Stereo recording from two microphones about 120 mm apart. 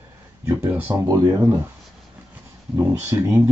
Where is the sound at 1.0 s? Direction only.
25° right (ahead or behind).